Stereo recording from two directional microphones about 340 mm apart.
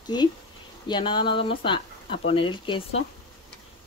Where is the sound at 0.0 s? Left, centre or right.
Centre.